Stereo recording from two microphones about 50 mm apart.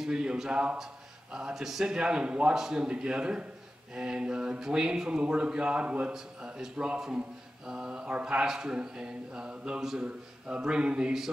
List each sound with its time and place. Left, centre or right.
0.0 s a man's voice: centre
2.0 s a man's voice: centre
10.0 s a man's voice: right